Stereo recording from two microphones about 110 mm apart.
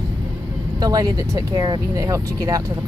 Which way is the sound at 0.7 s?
35° right (ahead or behind).